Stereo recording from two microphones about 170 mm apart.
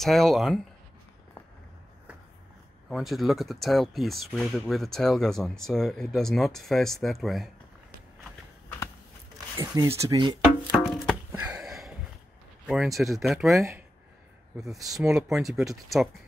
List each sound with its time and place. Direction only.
0.0 s speech: centre (ahead or behind)
2.9 s speech: centre (ahead or behind)
9.6 s speech: 20° right (ahead or behind)
10.7 s music: 5° right (ahead or behind)
12.6 s speech: centre (ahead or behind)
13.6 s speech: 15° right (ahead or behind)
14.9 s speech: centre (ahead or behind)